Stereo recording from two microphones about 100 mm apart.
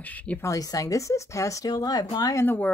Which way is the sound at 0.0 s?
15° left (ahead or behind).